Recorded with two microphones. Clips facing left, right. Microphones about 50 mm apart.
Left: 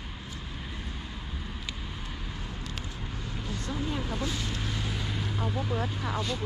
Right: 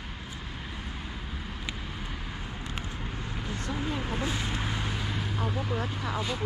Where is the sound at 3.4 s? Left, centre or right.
Right.